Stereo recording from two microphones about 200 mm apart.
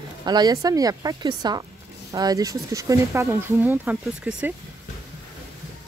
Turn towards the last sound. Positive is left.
turn(degrees=-5)  # may be behind; listen again after turning